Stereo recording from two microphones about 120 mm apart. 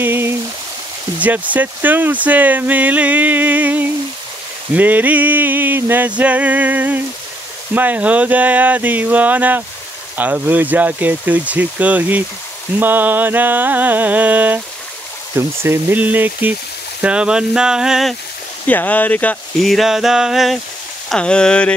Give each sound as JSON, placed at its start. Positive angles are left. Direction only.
{"t": 0.0, "sound": "a sound", "side_deg": -20}
{"t": 1.2, "sound": "speech", "side_deg": -15}
{"t": 18.7, "sound": "speech", "side_deg": 15}
{"t": 19.6, "sound": "speech", "side_deg": 0}